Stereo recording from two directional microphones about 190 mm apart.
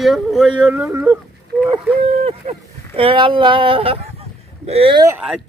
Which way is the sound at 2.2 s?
30° right (ahead or behind).